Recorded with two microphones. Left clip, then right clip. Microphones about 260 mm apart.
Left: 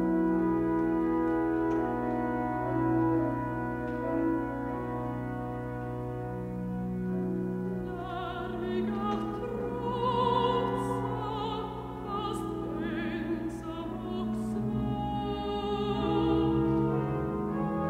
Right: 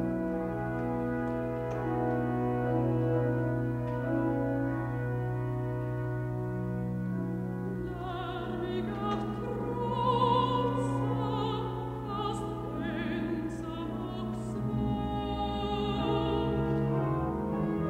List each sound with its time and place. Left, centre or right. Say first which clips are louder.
10.0 s opera: right 1 dB; left
15.7 s music: left 1 dB; left